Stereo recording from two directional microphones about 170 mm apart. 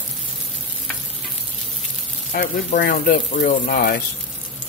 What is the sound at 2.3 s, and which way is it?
Speech, 60° left (ahead or behind).